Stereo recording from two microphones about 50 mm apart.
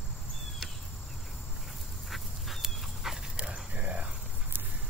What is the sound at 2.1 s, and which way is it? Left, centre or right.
Dog, centre.